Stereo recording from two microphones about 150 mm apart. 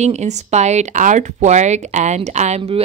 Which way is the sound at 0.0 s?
50° right (ahead or behind).